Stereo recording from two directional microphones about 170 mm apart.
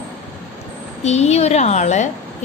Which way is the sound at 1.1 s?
40° left (ahead or behind).